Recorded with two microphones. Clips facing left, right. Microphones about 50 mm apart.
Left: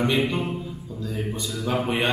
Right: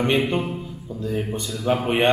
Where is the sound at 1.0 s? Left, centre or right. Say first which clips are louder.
Right 5 dB; right.